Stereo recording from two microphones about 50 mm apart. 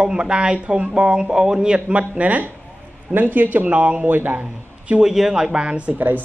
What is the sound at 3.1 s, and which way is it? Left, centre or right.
Speech, right.